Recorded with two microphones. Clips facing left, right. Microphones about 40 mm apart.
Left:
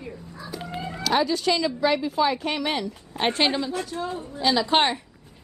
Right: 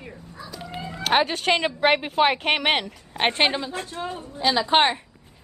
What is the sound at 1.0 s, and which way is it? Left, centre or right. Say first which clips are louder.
A woman's voice: right 1 dB; right.